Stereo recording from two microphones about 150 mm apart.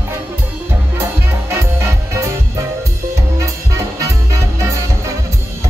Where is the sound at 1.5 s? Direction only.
20° right (ahead or behind).